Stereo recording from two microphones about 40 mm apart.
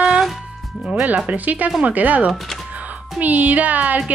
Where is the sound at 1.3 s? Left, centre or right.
Right.